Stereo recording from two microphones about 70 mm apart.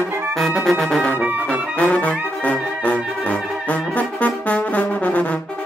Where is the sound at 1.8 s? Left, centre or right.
Left.